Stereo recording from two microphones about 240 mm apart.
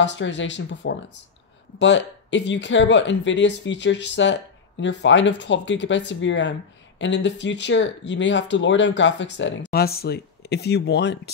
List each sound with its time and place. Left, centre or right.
0.0 s speech: left